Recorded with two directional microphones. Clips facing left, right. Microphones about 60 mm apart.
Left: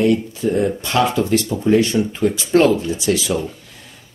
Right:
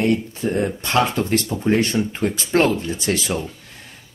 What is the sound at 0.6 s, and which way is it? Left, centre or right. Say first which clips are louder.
Speech: left 1 dB; right.